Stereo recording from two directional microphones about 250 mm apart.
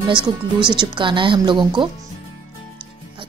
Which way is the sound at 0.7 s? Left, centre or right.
Centre.